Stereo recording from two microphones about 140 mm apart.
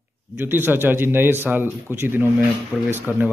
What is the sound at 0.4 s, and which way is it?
Speech, 15° right (ahead or behind).